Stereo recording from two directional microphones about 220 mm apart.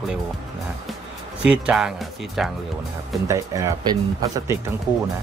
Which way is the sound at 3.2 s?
15° right (ahead or behind).